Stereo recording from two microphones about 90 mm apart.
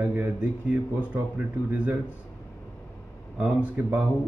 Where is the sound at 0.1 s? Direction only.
15° right (ahead or behind).